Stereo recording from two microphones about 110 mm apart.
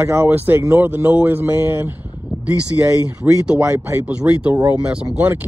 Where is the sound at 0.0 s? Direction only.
20° right (ahead or behind).